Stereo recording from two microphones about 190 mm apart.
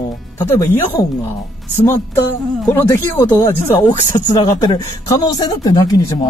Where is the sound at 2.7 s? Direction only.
15° left (ahead or behind).